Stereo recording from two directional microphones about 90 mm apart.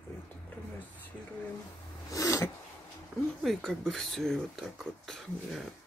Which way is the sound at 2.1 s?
40° left (ahead or behind).